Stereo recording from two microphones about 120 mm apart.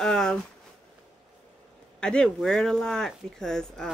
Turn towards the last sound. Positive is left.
turn(degrees=5)  # may be behind; listen again after turning